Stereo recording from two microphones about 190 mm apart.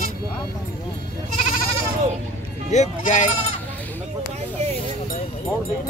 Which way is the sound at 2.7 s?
40° left (ahead or behind).